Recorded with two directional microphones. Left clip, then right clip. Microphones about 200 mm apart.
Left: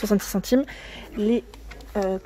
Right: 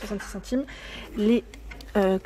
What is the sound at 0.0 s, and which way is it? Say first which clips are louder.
Speech: left 10 dB; 40° left (ahead or behind).